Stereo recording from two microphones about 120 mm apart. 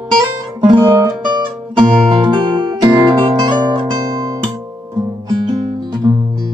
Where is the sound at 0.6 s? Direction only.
40° right (ahead or behind).